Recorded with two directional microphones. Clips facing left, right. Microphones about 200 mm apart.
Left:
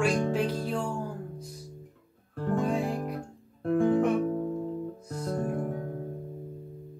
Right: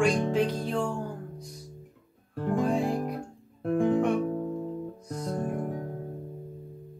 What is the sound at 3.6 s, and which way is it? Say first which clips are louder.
Music: left 1 dB; 20° right (ahead or behind).